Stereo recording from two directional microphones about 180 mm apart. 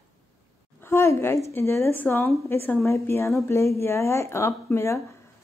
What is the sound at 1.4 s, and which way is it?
Speech, 15° left (ahead or behind).